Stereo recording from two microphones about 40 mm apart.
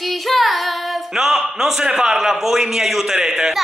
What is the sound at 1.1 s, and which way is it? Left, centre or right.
A man's voice, centre.